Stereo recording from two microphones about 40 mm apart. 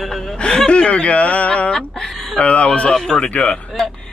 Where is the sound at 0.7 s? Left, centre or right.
Left.